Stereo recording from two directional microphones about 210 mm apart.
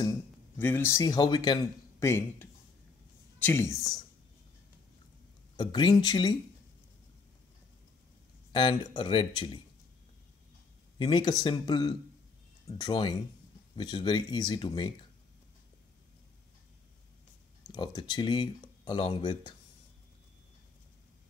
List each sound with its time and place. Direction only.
0.0 s speech: 10° left (ahead or behind)
3.4 s speech: 10° left (ahead or behind)
5.6 s speech: 20° left (ahead or behind)
8.5 s speech: 20° left (ahead or behind)
11.0 s speech: 20° left (ahead or behind)
17.6 s speech: 20° left (ahead or behind)